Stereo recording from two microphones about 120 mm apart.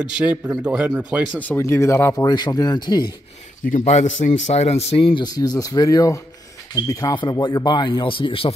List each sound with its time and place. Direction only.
0.1 s speech: 10° right (ahead or behind)
1.5 s speech: 20° left (ahead or behind)
2.2 s speech: 35° left (ahead or behind)
3.7 s a man's voice: 80° left; by 8.5 s 50° left (ahead or behind)